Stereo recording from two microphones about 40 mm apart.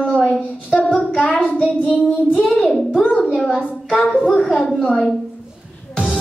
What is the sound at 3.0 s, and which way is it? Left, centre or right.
A child's voice, left.